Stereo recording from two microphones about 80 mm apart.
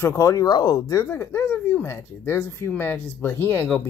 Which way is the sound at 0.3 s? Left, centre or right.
Left.